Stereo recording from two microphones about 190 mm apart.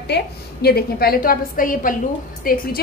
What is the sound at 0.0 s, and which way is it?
A woman's voice, 60° left (ahead or behind).